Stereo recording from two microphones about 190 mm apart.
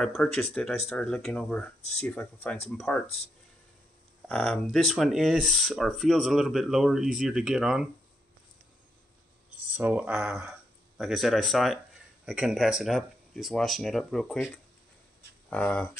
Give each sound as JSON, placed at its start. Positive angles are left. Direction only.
{"t": 0.0, "sound": "speech", "side_deg": 5}
{"t": 4.3, "sound": "speech", "side_deg": 5}
{"t": 9.7, "sound": "speech", "side_deg": -10}